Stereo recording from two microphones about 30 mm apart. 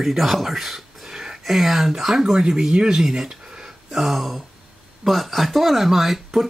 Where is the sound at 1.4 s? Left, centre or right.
Centre.